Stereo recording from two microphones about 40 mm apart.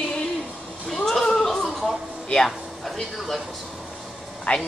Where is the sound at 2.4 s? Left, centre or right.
Centre.